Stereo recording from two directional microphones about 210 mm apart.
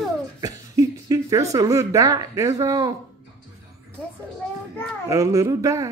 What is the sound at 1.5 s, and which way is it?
Speech, 15° right (ahead or behind).